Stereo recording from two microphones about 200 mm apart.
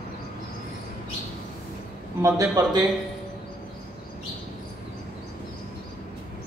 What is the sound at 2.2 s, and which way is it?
Speech, 20° right (ahead or behind).